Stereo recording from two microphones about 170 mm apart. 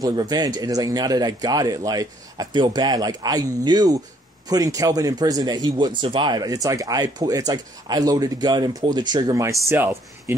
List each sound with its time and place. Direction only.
0.0 s speech: 25° right (ahead or behind)